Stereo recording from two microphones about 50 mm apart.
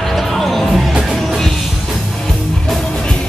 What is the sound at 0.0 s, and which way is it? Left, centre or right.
Music, centre.